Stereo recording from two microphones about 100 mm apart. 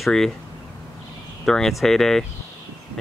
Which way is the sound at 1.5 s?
5° left (ahead or behind).